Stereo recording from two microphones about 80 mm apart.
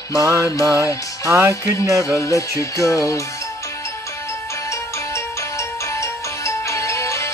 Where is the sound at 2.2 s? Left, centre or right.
Left.